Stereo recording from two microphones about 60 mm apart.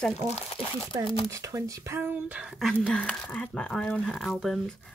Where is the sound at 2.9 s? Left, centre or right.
Centre.